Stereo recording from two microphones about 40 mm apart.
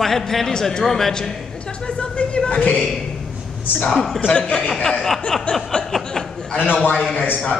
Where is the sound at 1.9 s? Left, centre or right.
Left.